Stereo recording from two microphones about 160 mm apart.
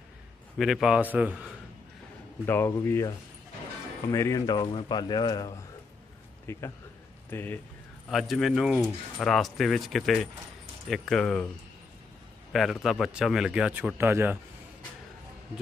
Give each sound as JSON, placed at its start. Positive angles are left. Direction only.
{"t": 0.6, "sound": "speech", "side_deg": 0}
{"t": 2.4, "sound": "speech", "side_deg": 15}
{"t": 4.1, "sound": "a man's voice", "side_deg": 20}
{"t": 8.1, "sound": "speech", "side_deg": 0}
{"t": 12.8, "sound": "speech", "side_deg": 0}